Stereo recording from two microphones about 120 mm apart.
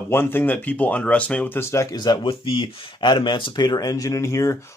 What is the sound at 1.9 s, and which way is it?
Speech, 35° left (ahead or behind).